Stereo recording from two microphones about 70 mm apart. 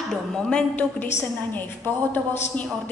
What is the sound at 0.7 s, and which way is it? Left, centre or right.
A woman's voice, left.